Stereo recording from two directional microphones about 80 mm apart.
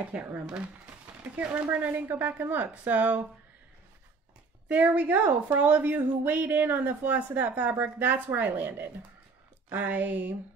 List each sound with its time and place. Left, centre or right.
0.1 s a woman's voice: centre
4.6 s a woman's voice: centre